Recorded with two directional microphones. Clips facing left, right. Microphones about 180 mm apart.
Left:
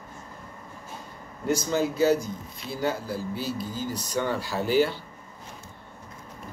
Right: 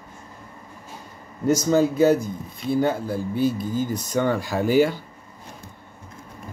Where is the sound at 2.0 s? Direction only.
55° right (ahead or behind).